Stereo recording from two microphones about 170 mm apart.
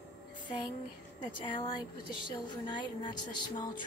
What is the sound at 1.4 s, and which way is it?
Speech, 30° left (ahead or behind).